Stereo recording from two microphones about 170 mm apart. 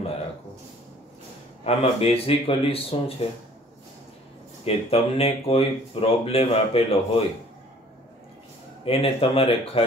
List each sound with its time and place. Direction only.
1.6 s speech: 35° left (ahead or behind)
4.6 s speech: 35° left (ahead or behind)
8.8 s speech: 35° left (ahead or behind)